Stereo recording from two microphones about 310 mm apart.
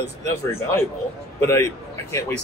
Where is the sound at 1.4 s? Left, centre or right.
Centre.